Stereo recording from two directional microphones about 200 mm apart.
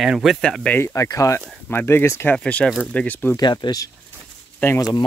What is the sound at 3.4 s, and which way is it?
Speech, 20° left (ahead or behind).